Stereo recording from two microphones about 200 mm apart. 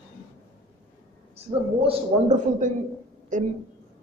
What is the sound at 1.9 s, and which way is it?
A woman's voice, 35° right (ahead or behind).